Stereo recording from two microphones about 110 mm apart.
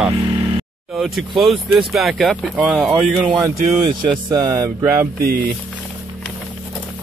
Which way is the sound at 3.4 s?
35° right (ahead or behind).